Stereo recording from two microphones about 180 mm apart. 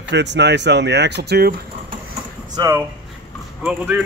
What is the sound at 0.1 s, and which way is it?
Speech, 75° right (ahead or behind).